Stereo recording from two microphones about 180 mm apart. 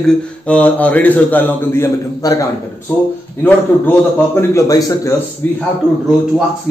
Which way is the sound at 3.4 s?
10° left (ahead or behind).